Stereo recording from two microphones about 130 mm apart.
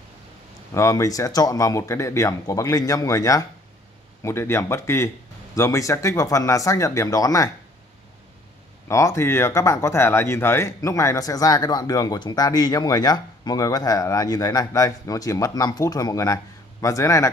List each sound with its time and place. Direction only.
0.7 s speech: 25° left (ahead or behind)
8.8 s speech: 20° left (ahead or behind)